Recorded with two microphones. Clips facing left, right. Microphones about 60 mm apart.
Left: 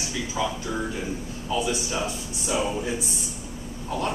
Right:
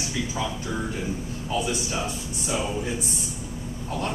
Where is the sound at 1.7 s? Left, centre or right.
Centre.